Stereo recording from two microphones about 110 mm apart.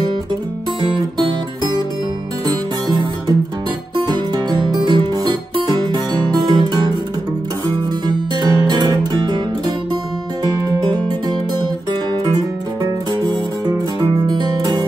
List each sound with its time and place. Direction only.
1.1 s music: 40° right (ahead or behind)
8.4 s music: 40° right (ahead or behind)
14.0 s music: 40° right (ahead or behind)